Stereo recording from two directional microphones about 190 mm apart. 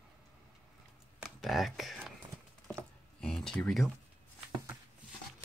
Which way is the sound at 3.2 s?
Centre (ahead or behind).